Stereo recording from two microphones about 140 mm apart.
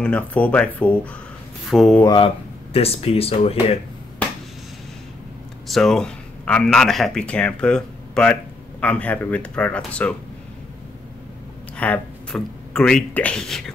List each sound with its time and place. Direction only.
0.0 s speech: 10° left (ahead or behind)
1.7 s speech: centre (ahead or behind)
2.0 s speech: 35° left (ahead or behind)
5.7 s speech: 5° left (ahead or behind)
11.7 s speech: 10° left (ahead or behind)